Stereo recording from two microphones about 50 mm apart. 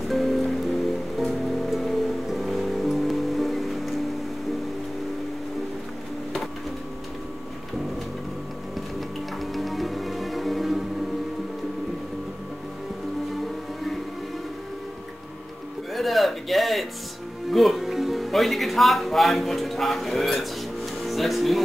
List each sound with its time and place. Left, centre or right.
0.1 s music: centre
9.4 s music: centre
15.9 s a sound: centre
17.5 s music: centre